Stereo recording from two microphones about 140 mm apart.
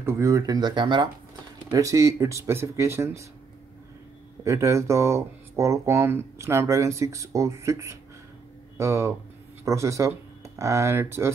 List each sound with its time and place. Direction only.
0.0 s speech: 20° right (ahead or behind); by 1.1 s 35° right (ahead or behind)
1.7 s speech: 25° right (ahead or behind)
4.5 s speech: 20° right (ahead or behind)